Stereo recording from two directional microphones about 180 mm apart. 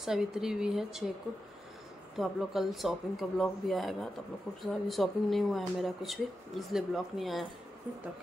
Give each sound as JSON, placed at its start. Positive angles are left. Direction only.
{"t": 0.0, "sound": "speech", "side_deg": -5}
{"t": 2.1, "sound": "speech", "side_deg": 0}